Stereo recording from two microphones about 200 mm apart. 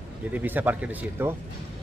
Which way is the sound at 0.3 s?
10° right (ahead or behind).